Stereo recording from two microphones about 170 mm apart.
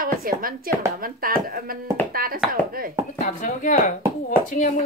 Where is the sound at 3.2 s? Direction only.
50° left (ahead or behind).